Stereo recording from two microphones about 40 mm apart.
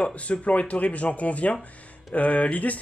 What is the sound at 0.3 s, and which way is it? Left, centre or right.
Speech, left.